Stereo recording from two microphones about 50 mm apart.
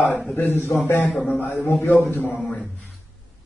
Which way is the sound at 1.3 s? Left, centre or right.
Left.